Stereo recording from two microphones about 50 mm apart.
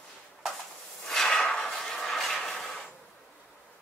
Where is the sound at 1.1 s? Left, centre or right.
Centre.